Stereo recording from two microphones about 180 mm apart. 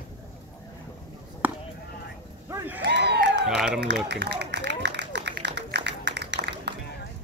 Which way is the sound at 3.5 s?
5° right (ahead or behind).